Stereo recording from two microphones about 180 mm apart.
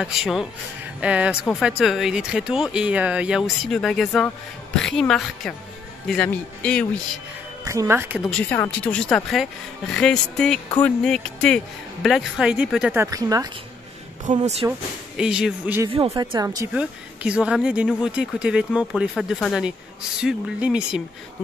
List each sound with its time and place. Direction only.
0.0 s speech: centre (ahead or behind)
7.6 s speech: 15° right (ahead or behind)
8.2 s speech: 5° left (ahead or behind); by 13.5 s 20° right (ahead or behind)
14.3 s speech: 40° right (ahead or behind)
15.1 s speech: 5° right (ahead or behind)
16.1 s speech: 20° right (ahead or behind)
16.7 s speech: 5° right (ahead or behind)